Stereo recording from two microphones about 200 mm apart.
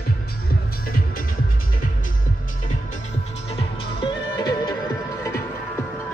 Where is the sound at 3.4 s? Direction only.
30° left (ahead or behind).